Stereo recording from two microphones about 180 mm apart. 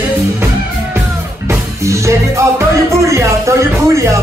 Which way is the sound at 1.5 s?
15° right (ahead or behind).